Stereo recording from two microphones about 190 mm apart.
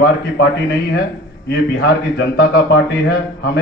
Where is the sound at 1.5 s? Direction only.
60° left (ahead or behind).